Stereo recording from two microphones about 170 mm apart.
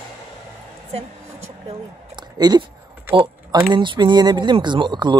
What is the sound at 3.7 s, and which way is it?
Speech, 25° right (ahead or behind).